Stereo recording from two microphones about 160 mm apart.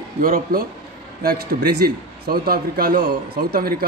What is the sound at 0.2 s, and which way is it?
A man's voice, 65° right (ahead or behind).